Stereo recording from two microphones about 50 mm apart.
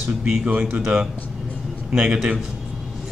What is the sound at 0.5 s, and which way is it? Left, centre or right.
A man's voice, centre.